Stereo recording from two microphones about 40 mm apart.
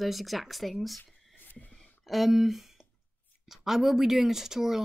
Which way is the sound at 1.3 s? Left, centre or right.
Left.